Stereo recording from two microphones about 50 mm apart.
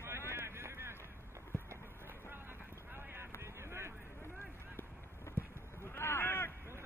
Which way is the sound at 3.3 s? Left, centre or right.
Right.